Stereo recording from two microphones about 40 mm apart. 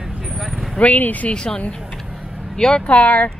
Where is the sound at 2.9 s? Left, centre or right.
Left.